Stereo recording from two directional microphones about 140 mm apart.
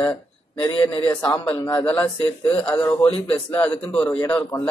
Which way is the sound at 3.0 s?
40° left (ahead or behind).